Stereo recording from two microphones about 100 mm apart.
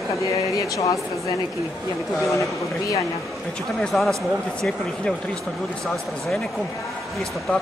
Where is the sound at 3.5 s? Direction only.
10° left (ahead or behind).